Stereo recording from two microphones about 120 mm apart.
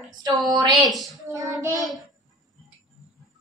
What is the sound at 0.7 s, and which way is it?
Speech, centre (ahead or behind).